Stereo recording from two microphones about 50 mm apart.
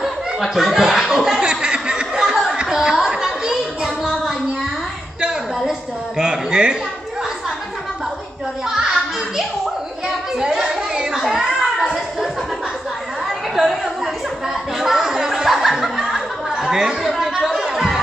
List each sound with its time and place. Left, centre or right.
0.0 s chuckle: centre
2.5 s music: centre
5.7 s a sound: centre
8.6 s children playing: centre
14.8 s music: centre
16.6 s chatter: centre
17.2 s music: centre